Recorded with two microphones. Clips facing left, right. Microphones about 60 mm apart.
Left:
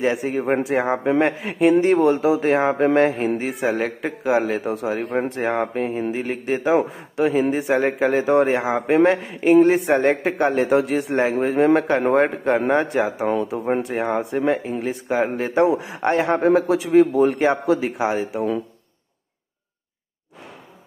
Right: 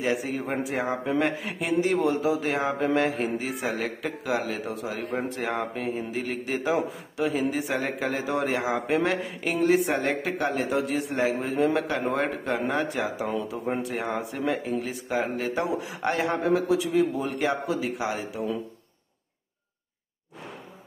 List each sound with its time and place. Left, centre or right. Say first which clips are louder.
0.0 s a man's voice: left 6 dB; left
6.8 s a man's voice: left 7 dB; left
7.3 s a man's voice: left 8 dB; left
13.0 s a man's voice: left 7 dB; left
17.7 s a man's voice: left 7 dB; left